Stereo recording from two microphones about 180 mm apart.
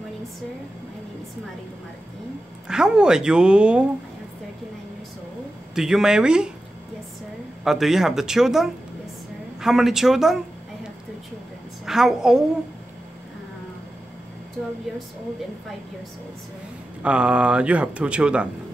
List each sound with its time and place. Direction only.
2.7 s speech: 5° right (ahead or behind)
5.8 s speech: 5° right (ahead or behind)
7.6 s speech: centre (ahead or behind)
11.8 s speech: centre (ahead or behind)
17.0 s speech: 5° right (ahead or behind)